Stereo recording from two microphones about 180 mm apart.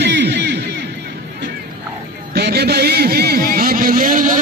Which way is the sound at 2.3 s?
65° right (ahead or behind).